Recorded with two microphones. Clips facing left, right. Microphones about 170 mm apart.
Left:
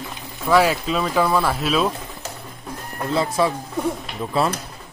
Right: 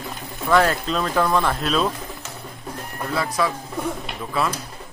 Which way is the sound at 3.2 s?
25° left (ahead or behind).